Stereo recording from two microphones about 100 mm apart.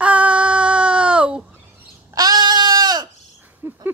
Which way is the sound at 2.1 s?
45° right (ahead or behind).